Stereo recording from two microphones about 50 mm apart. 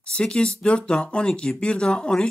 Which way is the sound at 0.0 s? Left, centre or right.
Centre.